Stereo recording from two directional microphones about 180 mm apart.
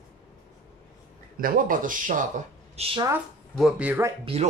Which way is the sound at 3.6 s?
5° right (ahead or behind).